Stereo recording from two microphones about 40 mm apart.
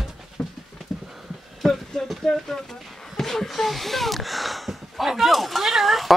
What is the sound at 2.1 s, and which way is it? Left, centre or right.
Speech, centre.